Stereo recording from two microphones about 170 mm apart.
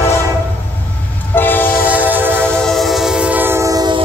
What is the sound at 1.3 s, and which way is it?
Train, 10° left (ahead or behind).